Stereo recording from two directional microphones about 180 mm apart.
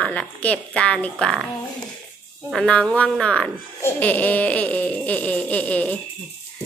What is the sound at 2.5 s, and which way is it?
Speech, 5° left (ahead or behind).